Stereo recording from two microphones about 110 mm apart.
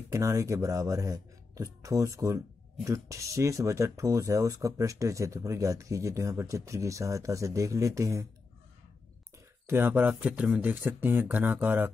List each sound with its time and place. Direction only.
0.1 s speech: 25° right (ahead or behind)
9.7 s speech: 20° right (ahead or behind)